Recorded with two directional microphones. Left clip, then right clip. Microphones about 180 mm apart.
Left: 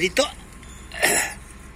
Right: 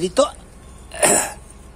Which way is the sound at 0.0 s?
30° right (ahead or behind).